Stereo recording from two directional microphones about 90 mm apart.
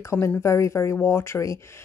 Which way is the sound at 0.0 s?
35° left (ahead or behind).